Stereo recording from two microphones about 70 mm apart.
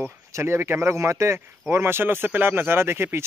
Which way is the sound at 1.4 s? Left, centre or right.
Right.